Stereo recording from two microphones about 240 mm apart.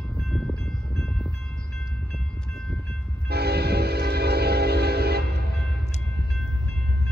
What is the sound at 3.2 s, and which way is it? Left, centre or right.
Train, right.